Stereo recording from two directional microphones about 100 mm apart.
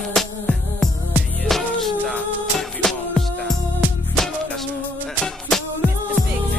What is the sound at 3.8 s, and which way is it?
Music, 20° right (ahead or behind).